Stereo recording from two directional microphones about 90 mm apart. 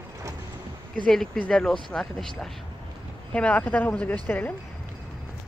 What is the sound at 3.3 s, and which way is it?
Speech, 15° left (ahead or behind).